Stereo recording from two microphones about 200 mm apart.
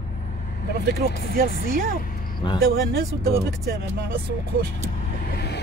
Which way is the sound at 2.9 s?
45° right (ahead or behind).